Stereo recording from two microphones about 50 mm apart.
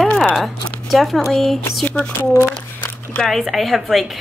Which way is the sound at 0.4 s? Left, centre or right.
Centre.